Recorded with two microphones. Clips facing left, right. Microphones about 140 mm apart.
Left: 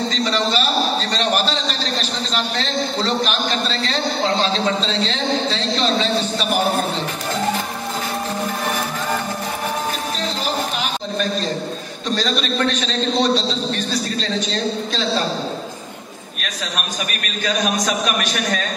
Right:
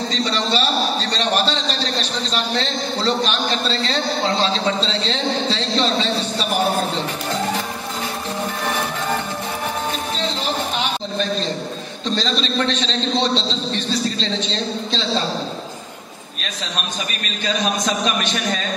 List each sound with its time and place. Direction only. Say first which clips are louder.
0.1 s a man's voice: left 1 dB; 30° right (ahead or behind)
12.2 s a man's voice: left 1 dB; 30° right (ahead or behind)